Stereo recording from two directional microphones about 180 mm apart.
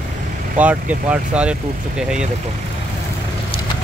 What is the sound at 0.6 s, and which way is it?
Speech, 10° right (ahead or behind).